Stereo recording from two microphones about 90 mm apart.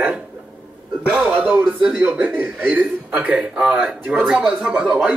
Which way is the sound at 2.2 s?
15° right (ahead or behind).